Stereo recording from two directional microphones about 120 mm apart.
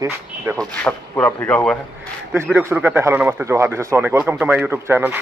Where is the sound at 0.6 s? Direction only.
10° left (ahead or behind).